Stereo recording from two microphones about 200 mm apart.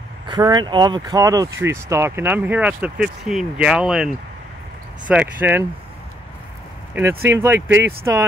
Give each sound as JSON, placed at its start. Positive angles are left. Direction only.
{"t": 0.3, "sound": "speech", "side_deg": -20}
{"t": 7.2, "sound": "speech", "side_deg": -10}